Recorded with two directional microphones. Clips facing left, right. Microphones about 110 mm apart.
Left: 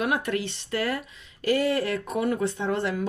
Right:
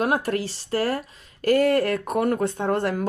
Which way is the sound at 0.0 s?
40° right (ahead or behind).